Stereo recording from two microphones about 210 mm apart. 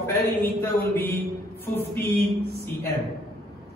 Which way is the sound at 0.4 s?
10° left (ahead or behind).